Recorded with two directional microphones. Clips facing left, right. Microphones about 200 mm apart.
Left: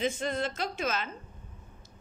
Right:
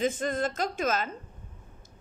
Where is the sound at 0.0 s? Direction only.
50° right (ahead or behind).